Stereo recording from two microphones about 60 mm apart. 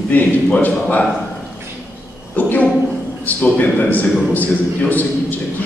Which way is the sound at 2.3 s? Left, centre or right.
Left.